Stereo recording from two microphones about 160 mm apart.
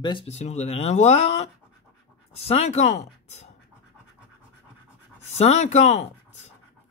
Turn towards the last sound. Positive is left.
turn(degrees=45)  # may be behind; listen again after turning